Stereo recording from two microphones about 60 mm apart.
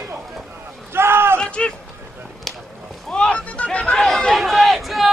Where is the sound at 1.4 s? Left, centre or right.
Centre.